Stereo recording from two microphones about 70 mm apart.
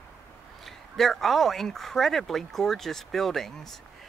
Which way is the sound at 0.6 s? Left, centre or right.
Centre.